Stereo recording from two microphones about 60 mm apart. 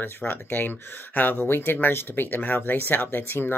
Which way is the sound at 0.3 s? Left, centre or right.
Left.